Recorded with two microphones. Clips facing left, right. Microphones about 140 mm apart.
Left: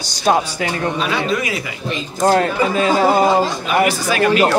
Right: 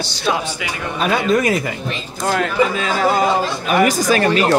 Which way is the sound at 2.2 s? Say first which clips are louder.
Left 2 dB; 35° left (ahead or behind).